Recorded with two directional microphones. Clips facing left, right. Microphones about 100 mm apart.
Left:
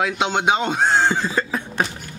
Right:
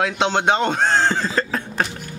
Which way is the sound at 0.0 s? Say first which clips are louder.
Right 1 dB; 5° left (ahead or behind).